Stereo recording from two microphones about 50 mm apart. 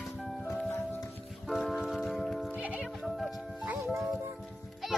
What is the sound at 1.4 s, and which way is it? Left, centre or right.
Music, centre.